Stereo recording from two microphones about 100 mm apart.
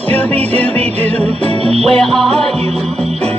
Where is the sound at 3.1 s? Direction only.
85° right.